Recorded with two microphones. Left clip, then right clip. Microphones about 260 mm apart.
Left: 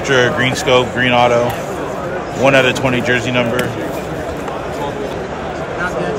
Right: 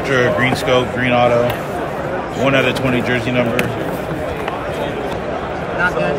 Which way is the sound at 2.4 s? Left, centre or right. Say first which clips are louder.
Left 4 dB; centre.